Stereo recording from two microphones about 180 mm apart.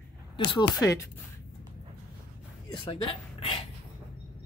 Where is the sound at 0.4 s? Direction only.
25° left (ahead or behind).